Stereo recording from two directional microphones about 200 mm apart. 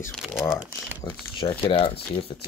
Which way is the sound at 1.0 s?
25° left (ahead or behind).